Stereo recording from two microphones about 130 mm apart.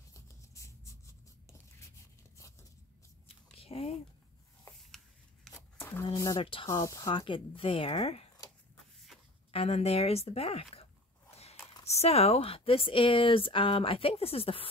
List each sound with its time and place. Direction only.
0.1 s a sound: 25° left (ahead or behind)
3.3 s biting: 45° left (ahead or behind)
5.5 s a sound: 20° left (ahead or behind)
6.1 s speech: 30° left (ahead or behind)
6.4 s speech: 40° left (ahead or behind)
6.8 s speech: 25° left (ahead or behind)
7.1 s speech: 40° left (ahead or behind)
9.5 s speech: 50° left (ahead or behind)